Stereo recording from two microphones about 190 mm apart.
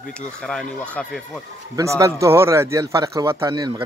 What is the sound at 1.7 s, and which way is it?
Speech, 15° right (ahead or behind).